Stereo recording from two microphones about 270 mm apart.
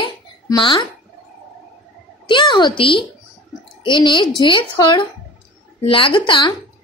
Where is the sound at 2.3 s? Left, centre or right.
Centre.